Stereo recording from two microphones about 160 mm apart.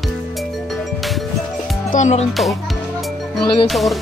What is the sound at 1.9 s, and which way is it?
Speech, 45° left (ahead or behind).